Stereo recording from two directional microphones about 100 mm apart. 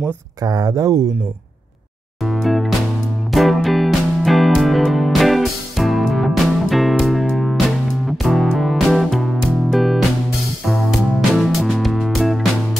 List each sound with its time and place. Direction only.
0.4 s speech: 40° right (ahead or behind)
2.2 s music: centre (ahead or behind)